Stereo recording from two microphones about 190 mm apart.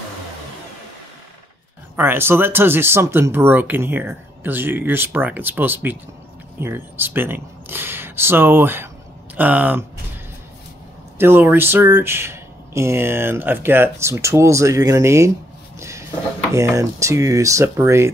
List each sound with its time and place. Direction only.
2.0 s speech: 10° right (ahead or behind)
11.1 s speech: 10° right (ahead or behind)
15.8 s a sound: 15° right (ahead or behind)
16.5 s speech: 15° right (ahead or behind)